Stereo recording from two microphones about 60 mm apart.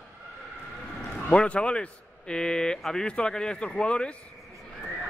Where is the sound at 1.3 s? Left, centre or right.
Centre.